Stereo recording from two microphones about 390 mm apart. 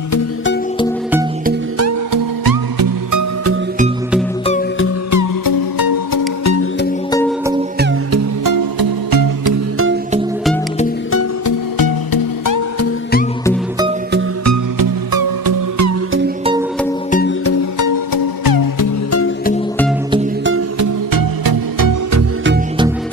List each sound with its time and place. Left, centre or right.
1.8 s music: right
2.4 s music: right
5.1 s music: left
7.1 s music: centre
8.1 s music: right
11.4 s music: left
14.4 s music: right
15.1 s music: right
17.5 s music: left
20.8 s music: right